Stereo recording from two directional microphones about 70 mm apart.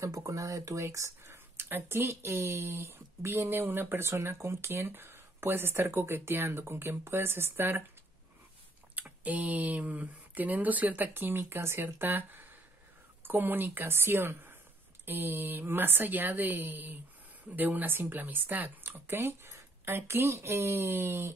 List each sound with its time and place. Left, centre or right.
0.0 s speech: right
8.9 s speech: right